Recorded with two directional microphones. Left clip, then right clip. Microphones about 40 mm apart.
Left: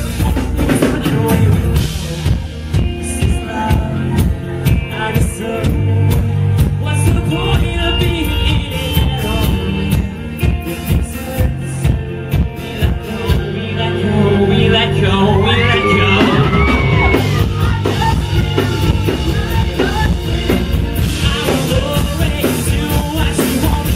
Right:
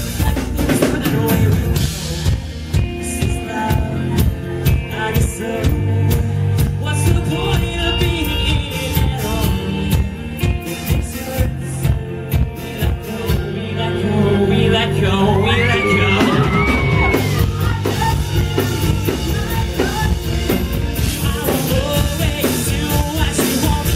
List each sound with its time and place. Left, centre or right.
0.6 s music: centre
3.2 s music: centre
7.2 s music: centre
12.8 s music: centre
22.4 s music: centre